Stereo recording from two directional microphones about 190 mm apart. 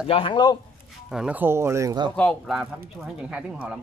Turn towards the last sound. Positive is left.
turn(degrees=-5)  # may be behind; listen again after turning